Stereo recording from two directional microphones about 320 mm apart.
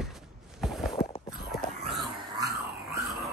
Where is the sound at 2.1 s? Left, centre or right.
Centre.